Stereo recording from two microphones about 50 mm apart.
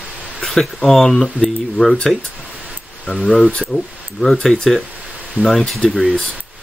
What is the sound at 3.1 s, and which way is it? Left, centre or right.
Speech, centre.